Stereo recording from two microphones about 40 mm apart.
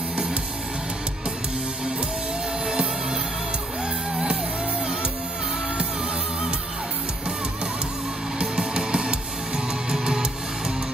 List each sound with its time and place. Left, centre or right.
2.6 s music: centre
8.4 s music: centre